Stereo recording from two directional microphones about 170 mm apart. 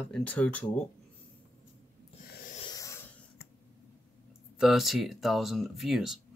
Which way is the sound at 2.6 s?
20° left (ahead or behind).